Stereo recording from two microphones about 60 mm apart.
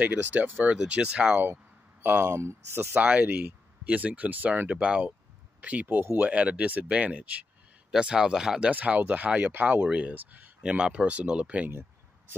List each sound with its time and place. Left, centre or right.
0.0 s speech: right
2.2 s speech: right
2.9 s speech: right
10.6 s speech: centre